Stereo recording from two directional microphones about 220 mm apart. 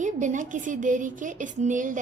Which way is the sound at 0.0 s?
35° right (ahead or behind).